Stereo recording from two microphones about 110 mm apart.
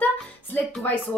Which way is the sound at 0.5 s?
15° left (ahead or behind).